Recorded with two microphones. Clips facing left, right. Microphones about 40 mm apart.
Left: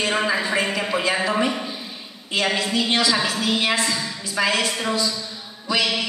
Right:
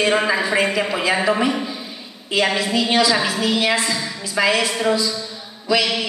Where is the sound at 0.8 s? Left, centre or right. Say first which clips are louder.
Right 3 dB; centre.